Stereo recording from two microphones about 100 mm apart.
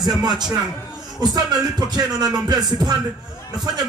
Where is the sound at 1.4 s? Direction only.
45° right (ahead or behind).